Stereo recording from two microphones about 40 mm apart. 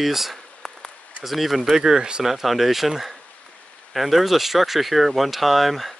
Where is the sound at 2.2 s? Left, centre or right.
Centre.